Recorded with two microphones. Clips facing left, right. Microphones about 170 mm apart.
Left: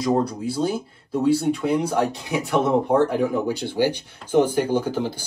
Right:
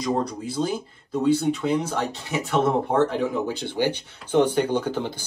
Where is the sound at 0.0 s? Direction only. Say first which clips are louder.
Left 4 dB; 10° left (ahead or behind).